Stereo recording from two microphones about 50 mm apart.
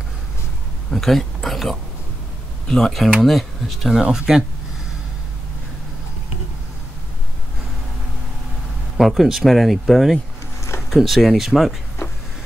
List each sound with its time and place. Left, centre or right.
0.8 s speech: centre
8.9 s speech: centre